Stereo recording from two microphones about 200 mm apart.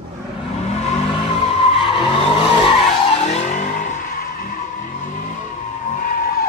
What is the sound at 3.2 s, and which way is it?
Vehicle, 35° left (ahead or behind).